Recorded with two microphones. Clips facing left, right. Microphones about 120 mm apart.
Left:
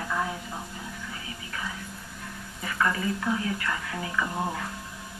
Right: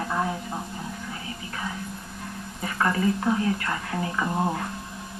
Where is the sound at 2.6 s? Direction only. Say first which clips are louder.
Right 4 dB; 35° right (ahead or behind).